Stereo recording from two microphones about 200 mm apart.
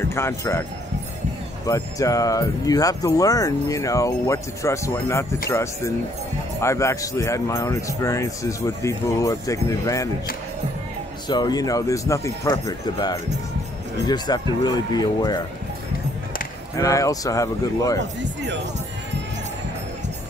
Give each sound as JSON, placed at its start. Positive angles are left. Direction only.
{"t": 0.0, "sound": "speech", "side_deg": 10}
{"t": 1.7, "sound": "speech", "side_deg": 15}
{"t": 11.2, "sound": "speech", "side_deg": 20}
{"t": 16.7, "sound": "speech", "side_deg": 15}
{"t": 17.9, "sound": "speech", "side_deg": -60}